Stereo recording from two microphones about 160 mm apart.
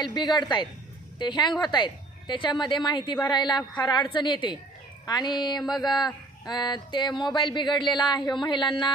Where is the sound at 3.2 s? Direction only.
25° left (ahead or behind).